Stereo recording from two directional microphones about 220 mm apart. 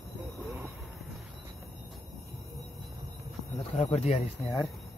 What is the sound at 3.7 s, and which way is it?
Speech, 30° left (ahead or behind).